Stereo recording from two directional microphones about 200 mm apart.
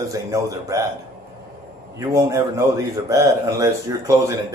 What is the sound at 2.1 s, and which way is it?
Speech, 15° right (ahead or behind).